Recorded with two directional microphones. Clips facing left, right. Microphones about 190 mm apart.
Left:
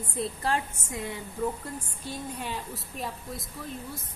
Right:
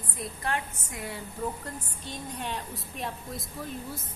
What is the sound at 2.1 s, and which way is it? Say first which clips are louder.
A woman's voice: left 1 dB; 5° left (ahead or behind).